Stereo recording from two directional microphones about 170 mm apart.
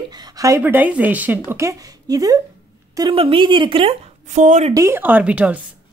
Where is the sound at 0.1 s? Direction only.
20° right (ahead or behind).